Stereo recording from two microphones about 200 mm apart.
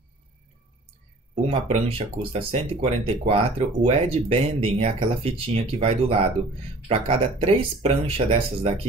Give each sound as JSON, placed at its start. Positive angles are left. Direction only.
{"t": 1.5, "sound": "speech", "side_deg": -30}